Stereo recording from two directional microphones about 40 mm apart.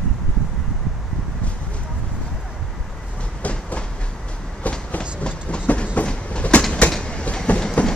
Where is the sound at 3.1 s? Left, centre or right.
Left.